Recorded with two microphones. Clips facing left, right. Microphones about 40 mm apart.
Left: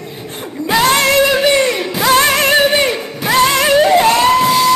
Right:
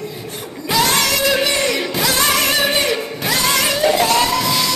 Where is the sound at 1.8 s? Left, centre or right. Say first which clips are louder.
Left 2 dB; centre.